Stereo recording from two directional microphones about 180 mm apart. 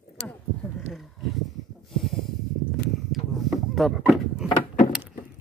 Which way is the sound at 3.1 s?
Centre (ahead or behind).